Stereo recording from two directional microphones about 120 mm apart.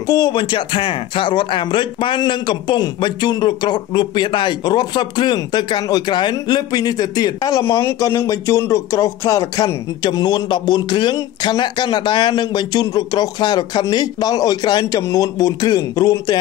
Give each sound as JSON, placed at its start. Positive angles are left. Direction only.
{"t": 0.0, "sound": "speech", "side_deg": 35}